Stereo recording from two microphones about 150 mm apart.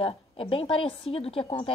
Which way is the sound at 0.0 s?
35° left (ahead or behind).